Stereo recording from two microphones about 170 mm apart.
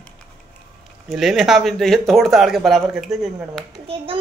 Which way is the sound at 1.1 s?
Centre (ahead or behind).